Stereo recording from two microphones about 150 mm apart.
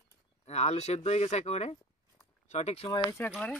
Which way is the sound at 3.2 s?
15° left (ahead or behind).